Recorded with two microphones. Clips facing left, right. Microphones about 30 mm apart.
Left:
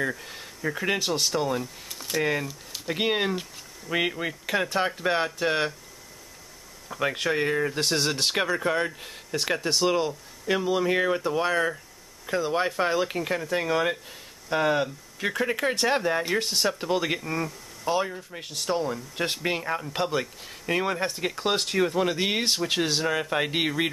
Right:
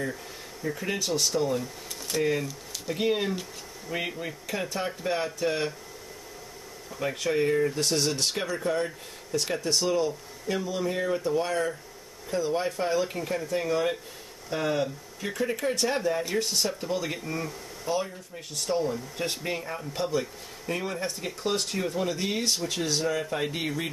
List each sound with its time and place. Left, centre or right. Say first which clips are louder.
0.7 s speech: left 3 dB; left
1.6 s speech: even; centre
2.9 s speech: left 2 dB; left
6.9 s speech: left 2 dB; left
7.7 s speech: left 1 dB; left
15.5 s speech: left 2 dB; left